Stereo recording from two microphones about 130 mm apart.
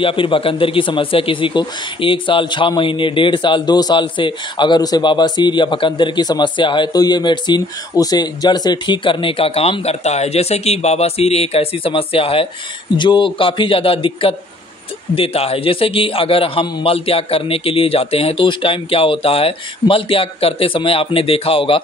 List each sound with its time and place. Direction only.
0.0 s a man's voice: 40° left (ahead or behind)